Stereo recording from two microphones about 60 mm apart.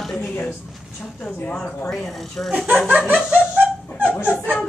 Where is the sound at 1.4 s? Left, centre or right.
Centre.